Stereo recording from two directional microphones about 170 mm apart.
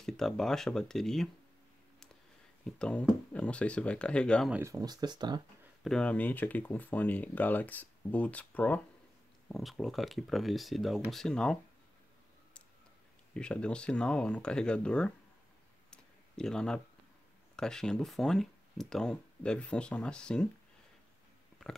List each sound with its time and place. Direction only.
0.0 s speech: centre (ahead or behind)
2.6 s speech: 5° left (ahead or behind)
4.5 s speech: 15° right (ahead or behind)
5.9 s speech: 5° left (ahead or behind)
13.3 s speech: 5° left (ahead or behind)
15.9 s a sound: 5° left (ahead or behind)
17.6 s speech: 5° left (ahead or behind)